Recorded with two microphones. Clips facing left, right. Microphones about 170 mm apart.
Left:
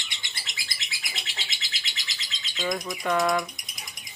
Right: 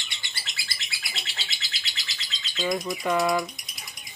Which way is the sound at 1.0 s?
20° left (ahead or behind).